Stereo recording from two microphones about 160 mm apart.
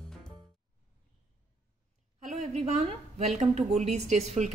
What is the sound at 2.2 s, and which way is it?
A woman's voice, 45° right (ahead or behind).